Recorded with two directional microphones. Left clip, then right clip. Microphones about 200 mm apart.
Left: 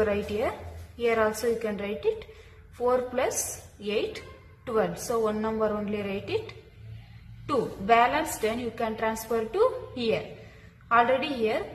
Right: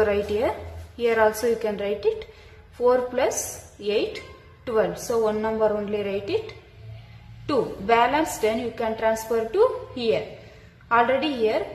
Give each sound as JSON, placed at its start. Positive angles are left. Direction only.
{"t": 0.0, "sound": "a woman's voice", "side_deg": -20}